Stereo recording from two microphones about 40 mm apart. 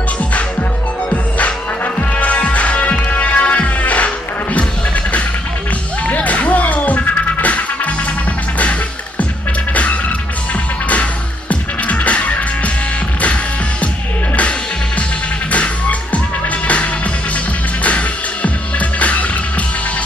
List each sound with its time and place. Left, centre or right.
2.0 s music: left
6.0 s music: left
10.9 s music: left
15.5 s music: left